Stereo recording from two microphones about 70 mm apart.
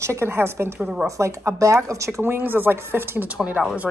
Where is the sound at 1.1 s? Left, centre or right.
Right.